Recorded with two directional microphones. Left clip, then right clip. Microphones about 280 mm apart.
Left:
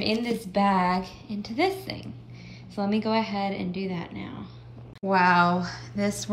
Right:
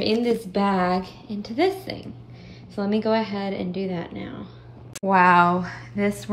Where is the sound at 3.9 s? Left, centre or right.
Left.